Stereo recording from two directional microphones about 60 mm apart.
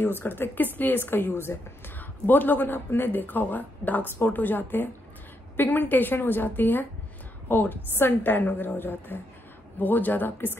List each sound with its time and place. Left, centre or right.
0.0 s speech: left
2.0 s speech: left